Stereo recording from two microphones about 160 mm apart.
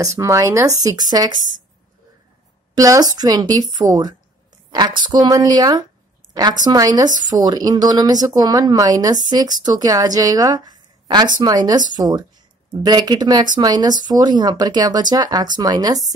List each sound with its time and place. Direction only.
0.0 s speech: 20° right (ahead or behind)
2.7 s speech: 20° right (ahead or behind)